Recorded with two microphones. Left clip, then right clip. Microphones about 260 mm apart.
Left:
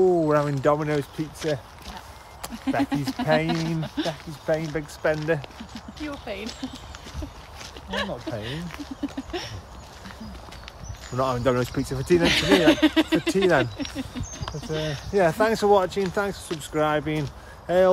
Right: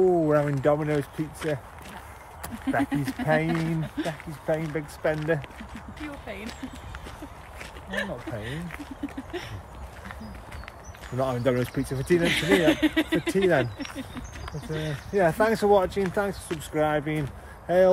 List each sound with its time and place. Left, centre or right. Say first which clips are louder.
0.1 s speech: left 1 dB; centre
2.6 s speech: left 1 dB; centre
6.2 s speech: left 5 dB; centre
7.9 s speech: left 3 dB; centre
11.1 s speech: left 2 dB; centre
12.2 s speech: left 3 dB; left
15.1 s speech: left 1 dB; centre